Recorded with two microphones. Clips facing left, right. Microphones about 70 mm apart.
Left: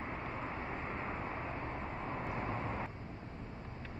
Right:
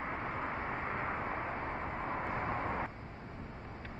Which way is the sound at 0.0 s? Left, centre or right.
Right.